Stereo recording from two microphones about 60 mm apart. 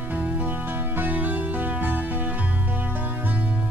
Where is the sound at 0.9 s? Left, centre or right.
Right.